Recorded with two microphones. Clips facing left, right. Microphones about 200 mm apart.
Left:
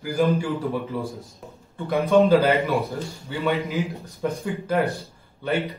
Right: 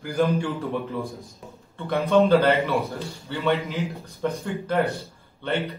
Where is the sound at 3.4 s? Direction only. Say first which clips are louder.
Even; centre (ahead or behind).